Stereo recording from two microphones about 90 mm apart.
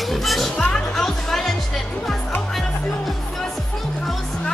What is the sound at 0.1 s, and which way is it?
Music, centre (ahead or behind).